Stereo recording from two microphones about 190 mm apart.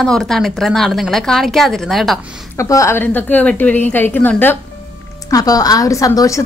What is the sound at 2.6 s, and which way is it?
A woman's voice, 15° left (ahead or behind).